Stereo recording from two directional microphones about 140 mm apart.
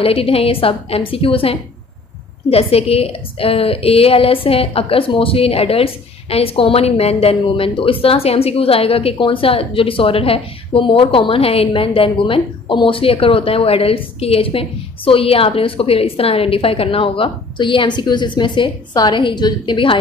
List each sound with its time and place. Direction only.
0.0 s a woman's voice: 45° left (ahead or behind)